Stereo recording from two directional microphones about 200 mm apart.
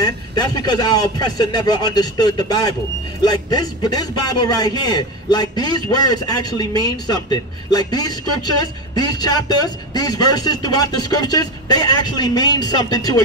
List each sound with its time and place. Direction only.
0.0 s a man's voice: 20° left (ahead or behind)